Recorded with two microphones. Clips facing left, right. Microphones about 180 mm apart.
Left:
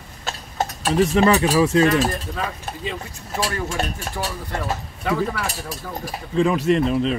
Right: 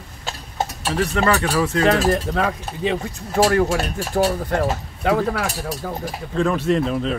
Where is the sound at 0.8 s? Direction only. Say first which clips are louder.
Left 4 dB; 15° left (ahead or behind).